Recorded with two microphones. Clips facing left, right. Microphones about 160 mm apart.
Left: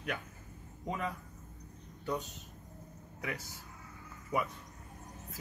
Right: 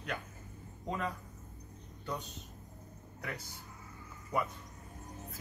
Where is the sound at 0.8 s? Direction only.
10° left (ahead or behind).